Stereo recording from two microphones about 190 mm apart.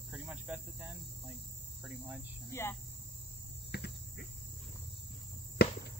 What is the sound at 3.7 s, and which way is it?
Cricket, 60° left (ahead or behind).